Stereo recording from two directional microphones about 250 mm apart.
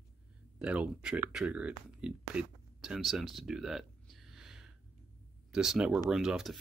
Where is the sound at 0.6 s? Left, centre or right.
Centre.